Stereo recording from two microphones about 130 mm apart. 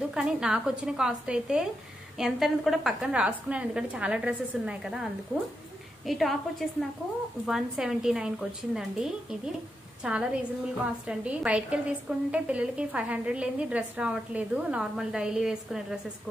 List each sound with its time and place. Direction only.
0.1 s a woman's voice: 5° right (ahead or behind)
7.4 s a woman's voice: 5° right (ahead or behind)